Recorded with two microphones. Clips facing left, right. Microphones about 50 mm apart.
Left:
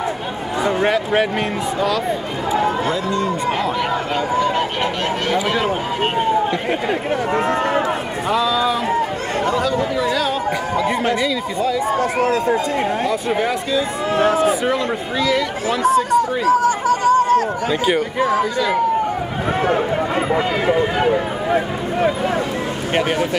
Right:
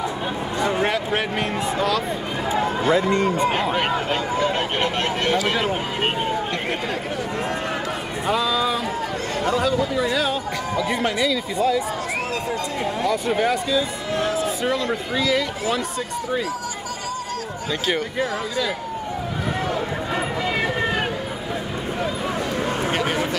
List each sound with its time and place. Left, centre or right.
0.7 s speech: centre
2.9 s speech: right
5.5 s speech: centre
7.3 s speech: left
8.3 s speech: centre
10.8 s speech: centre
13.1 s speech: centre
15.1 s speech: centre
16.4 s chatter: left
17.8 s speech: centre
19.6 s speech: left
22.9 s speech: left